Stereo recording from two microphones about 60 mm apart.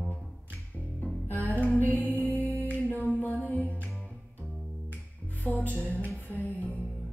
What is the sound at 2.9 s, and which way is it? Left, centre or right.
Female singing, left.